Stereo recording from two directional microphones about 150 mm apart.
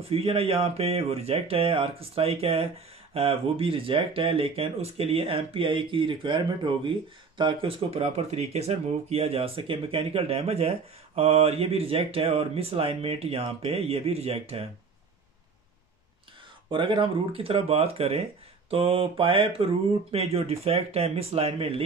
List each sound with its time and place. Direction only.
0.0 s speech: 40° right (ahead or behind)
16.7 s speech: 35° right (ahead or behind)